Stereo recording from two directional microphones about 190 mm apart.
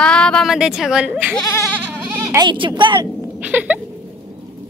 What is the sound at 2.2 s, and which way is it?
Speech, 20° right (ahead or behind).